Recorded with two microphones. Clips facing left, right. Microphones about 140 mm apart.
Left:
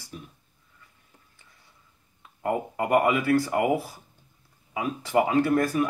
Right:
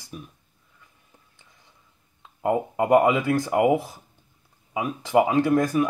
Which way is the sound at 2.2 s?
20° right (ahead or behind).